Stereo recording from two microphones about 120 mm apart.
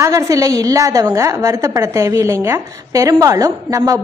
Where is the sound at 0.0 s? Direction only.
30° right (ahead or behind).